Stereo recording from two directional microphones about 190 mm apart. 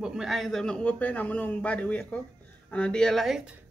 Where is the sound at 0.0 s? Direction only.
5° right (ahead or behind).